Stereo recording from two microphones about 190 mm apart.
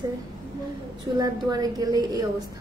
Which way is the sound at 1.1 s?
20° right (ahead or behind).